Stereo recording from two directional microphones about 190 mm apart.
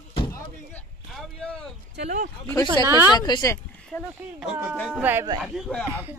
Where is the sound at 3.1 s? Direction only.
20° left (ahead or behind).